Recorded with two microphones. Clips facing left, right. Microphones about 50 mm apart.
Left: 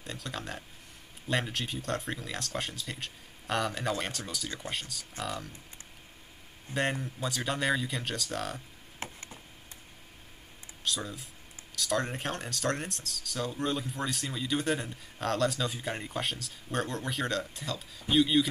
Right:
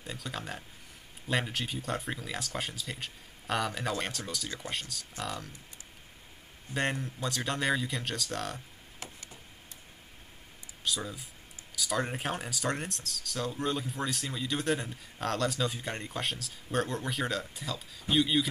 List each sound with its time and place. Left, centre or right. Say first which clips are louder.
0.0 s speech: even; centre
6.7 s speech: left 1 dB; centre
9.0 s a sound: left 5 dB; left
10.8 s speech: even; centre